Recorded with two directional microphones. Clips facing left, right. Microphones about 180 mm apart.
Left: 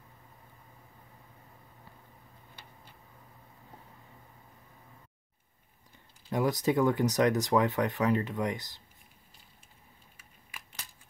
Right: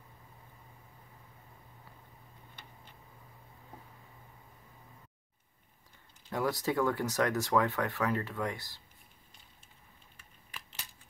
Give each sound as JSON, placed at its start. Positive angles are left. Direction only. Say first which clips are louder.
{"t": 6.3, "sound": "speech", "louder": "left 4 dB", "side_deg": 15}